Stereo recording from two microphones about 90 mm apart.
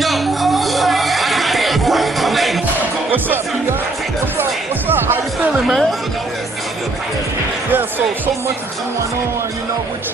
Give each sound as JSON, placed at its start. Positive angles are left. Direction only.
{"t": 0.0, "sound": "music", "side_deg": 0}
{"t": 4.4, "sound": "music", "side_deg": -25}
{"t": 5.7, "sound": "speech", "side_deg": 0}